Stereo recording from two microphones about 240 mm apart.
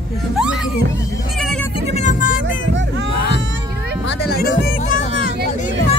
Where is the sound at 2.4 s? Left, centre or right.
Right.